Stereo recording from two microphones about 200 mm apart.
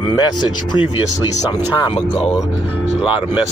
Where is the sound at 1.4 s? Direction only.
20° left (ahead or behind).